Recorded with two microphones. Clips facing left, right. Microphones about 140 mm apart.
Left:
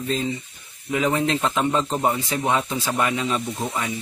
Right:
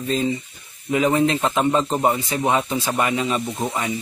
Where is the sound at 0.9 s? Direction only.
10° right (ahead or behind).